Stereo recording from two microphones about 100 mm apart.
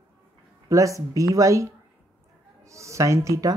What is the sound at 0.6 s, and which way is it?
Speech, 35° right (ahead or behind).